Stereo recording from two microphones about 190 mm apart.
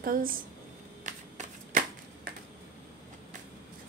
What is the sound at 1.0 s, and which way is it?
Shuffling cards, 40° right (ahead or behind).